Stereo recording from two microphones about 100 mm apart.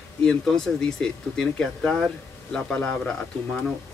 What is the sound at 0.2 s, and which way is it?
Speech, 5° left (ahead or behind).